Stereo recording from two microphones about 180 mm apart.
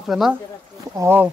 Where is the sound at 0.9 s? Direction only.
10° right (ahead or behind).